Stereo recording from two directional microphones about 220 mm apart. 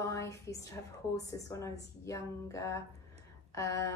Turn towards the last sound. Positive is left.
turn(degrees=15)  # may be behind; listen again after turning